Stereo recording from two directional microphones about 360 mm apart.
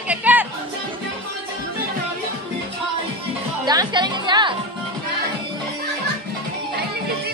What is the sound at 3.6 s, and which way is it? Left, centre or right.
Music, centre.